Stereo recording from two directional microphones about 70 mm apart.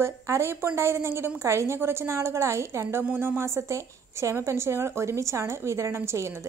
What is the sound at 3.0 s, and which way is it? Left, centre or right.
A woman's voice, right.